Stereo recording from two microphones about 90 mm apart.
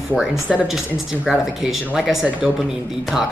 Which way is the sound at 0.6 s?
5° right (ahead or behind).